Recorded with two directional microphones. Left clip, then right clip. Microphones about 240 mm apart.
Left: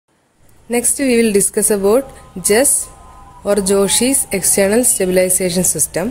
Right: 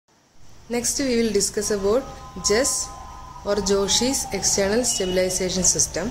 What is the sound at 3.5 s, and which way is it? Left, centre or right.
A woman's voice, left.